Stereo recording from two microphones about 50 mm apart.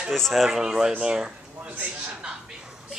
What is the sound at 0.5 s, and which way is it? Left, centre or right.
Speech, centre.